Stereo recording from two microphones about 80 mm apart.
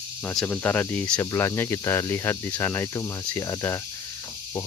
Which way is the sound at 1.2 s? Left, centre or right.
Left.